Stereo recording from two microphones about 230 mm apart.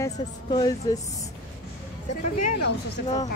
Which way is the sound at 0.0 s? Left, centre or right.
Centre.